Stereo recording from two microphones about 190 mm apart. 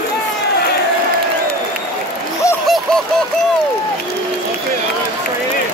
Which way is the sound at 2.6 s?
Centre (ahead or behind).